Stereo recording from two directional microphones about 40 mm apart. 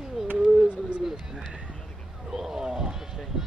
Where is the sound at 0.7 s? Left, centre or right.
Right.